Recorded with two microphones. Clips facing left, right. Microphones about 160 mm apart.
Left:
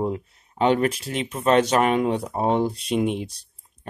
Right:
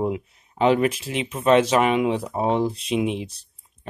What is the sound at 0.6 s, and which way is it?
Speech, 35° left (ahead or behind).